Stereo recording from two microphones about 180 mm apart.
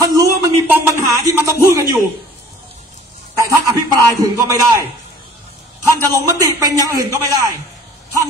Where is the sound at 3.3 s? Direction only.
20° right (ahead or behind).